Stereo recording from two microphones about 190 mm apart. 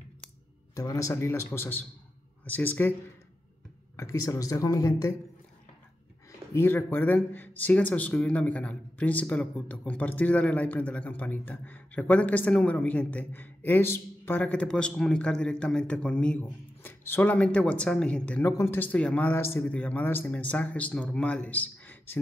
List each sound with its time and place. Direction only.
0.7 s speech: 15° left (ahead or behind)
6.5 s speech: 10° left (ahead or behind)